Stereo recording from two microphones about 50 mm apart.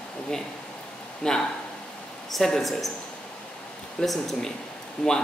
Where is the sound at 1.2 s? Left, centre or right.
Centre.